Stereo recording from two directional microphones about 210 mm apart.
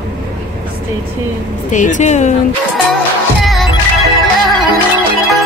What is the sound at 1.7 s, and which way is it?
Speech, 35° left (ahead or behind).